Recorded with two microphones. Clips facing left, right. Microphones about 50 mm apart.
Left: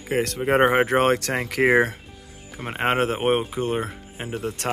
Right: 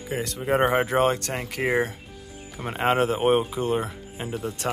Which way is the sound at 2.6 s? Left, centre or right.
Left.